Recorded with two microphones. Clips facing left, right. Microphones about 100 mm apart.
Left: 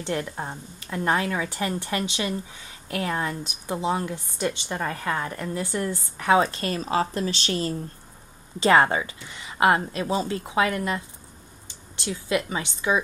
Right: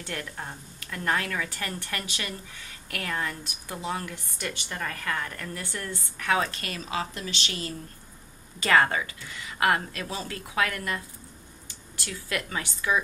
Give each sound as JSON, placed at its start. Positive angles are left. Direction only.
{"t": 0.0, "sound": "a woman's voice", "side_deg": 25}
{"t": 8.5, "sound": "a woman's voice", "side_deg": 25}